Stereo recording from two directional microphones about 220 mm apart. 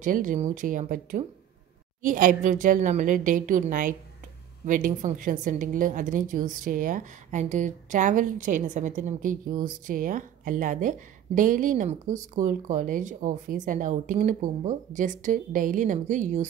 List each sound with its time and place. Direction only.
0.0 s a woman's voice: 35° right (ahead or behind)